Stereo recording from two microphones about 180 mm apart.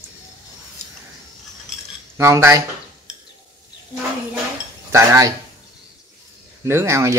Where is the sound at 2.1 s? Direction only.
15° right (ahead or behind).